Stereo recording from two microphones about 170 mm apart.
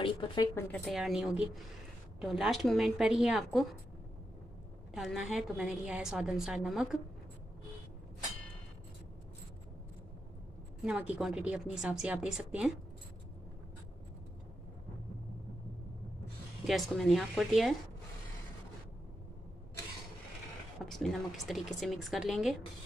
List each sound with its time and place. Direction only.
0.0 s a woman's voice: 30° left (ahead or behind)
0.6 s a woman's voice: 10° left (ahead or behind)
0.8 s a woman's voice: centre (ahead or behind)
4.9 s a woman's voice: centre (ahead or behind)
10.9 s a woman's voice: 5° right (ahead or behind)
16.6 s a woman's voice: centre (ahead or behind)
20.8 s a woman's voice: centre (ahead or behind)